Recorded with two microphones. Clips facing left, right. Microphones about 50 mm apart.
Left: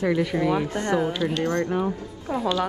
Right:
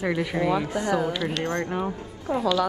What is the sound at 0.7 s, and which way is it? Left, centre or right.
Speech, left.